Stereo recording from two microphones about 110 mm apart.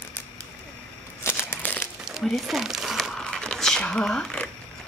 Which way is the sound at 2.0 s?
Centre (ahead or behind).